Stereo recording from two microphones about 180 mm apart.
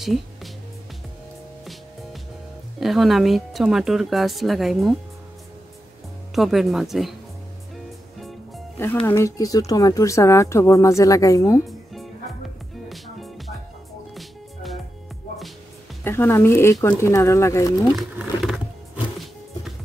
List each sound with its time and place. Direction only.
0.0 s music: centre (ahead or behind)
2.8 s speech: centre (ahead or behind)
6.3 s speech: centre (ahead or behind)
9.0 s speech: 15° left (ahead or behind)
11.6 s music: centre (ahead or behind)
16.0 s speech: 15° left (ahead or behind)
17.9 s a sound: centre (ahead or behind)